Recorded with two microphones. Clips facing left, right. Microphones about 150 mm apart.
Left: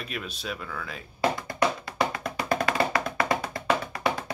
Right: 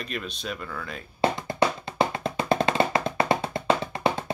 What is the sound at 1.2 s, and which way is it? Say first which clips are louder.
Music: right 2 dB; 25° right (ahead or behind).